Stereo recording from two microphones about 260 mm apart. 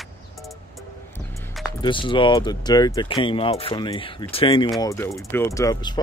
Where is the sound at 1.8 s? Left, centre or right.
Centre.